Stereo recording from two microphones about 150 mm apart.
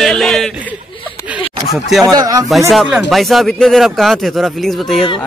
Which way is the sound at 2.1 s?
25° right (ahead or behind).